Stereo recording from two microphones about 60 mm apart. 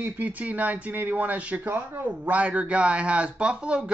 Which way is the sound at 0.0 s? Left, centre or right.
Right.